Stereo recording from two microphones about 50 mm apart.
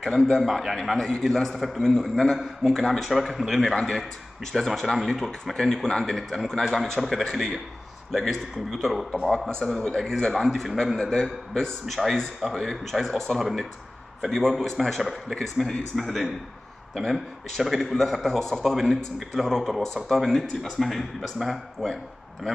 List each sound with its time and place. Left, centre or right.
0.0 s a man's voice: centre
0.7 s a man's voice: centre
9.9 s a man's voice: centre
11.0 s speech: centre
11.9 s a man's voice: centre
14.7 s a man's voice: centre